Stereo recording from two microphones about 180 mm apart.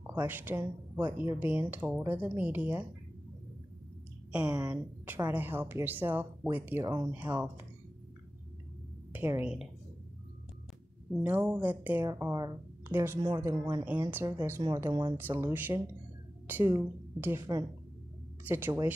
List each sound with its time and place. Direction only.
0.0 s speech: 10° right (ahead or behind)
4.3 s a woman's voice: 5° right (ahead or behind)
9.1 s speech: 10° right (ahead or behind)
11.2 s speech: 10° right (ahead or behind)
15.1 s a woman's voice: 10° right (ahead or behind)